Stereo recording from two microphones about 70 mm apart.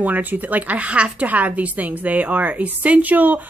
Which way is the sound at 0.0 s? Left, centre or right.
Right.